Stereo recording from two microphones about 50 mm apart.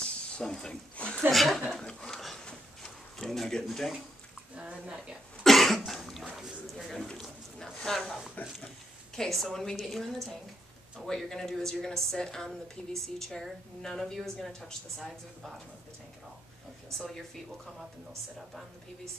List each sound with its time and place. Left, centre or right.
0.0 s a sound: centre
0.9 s speech: left
1.3 s a woman's voice: centre
1.8 s a sound: centre
4.6 s a woman's voice: right
5.4 s cough: centre
6.3 s a woman's voice: centre
7.5 s a woman's voice: centre